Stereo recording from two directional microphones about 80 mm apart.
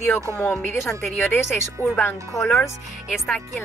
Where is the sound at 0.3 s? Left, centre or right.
Left.